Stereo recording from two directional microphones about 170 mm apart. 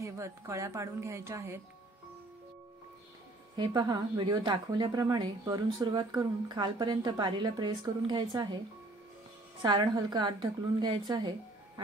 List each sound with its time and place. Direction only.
0.0 s a woman's voice: 20° right (ahead or behind)
3.5 s speech: 25° right (ahead or behind)
9.6 s speech: 25° right (ahead or behind)